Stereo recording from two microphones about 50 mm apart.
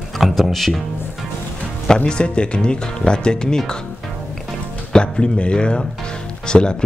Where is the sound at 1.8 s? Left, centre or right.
Centre.